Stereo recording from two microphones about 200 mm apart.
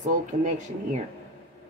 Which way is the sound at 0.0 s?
35° right (ahead or behind).